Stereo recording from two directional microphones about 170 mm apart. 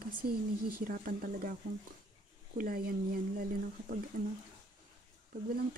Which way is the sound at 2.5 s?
55° right (ahead or behind).